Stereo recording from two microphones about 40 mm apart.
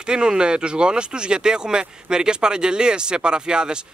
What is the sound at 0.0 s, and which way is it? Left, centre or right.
Speech, right.